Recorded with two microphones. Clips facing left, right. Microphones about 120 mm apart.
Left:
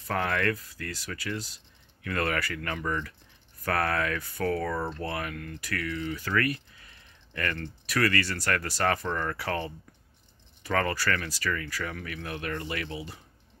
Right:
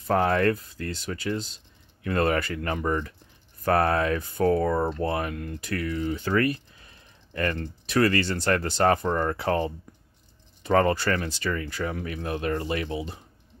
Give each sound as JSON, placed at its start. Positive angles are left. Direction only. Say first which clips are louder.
{"t": 0.0, "sound": "speech", "louder": "right 6 dB", "side_deg": -30}